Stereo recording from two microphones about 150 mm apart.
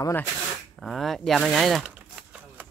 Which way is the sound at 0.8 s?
Centre (ahead or behind).